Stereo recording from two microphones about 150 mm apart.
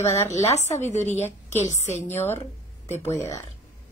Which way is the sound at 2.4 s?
45° left (ahead or behind).